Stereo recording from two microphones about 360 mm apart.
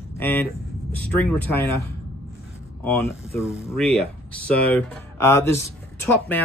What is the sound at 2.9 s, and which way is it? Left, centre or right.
Speech, centre.